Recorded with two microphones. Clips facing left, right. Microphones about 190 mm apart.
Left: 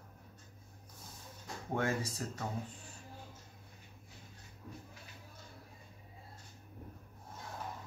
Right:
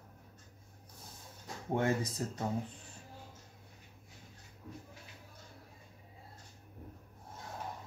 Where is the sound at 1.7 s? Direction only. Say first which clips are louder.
Right 3 dB; 20° right (ahead or behind).